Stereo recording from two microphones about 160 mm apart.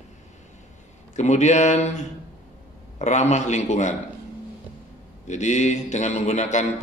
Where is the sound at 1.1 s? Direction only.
45° left (ahead or behind).